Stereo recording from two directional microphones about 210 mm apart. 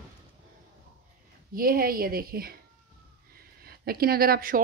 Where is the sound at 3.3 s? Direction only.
45° right (ahead or behind).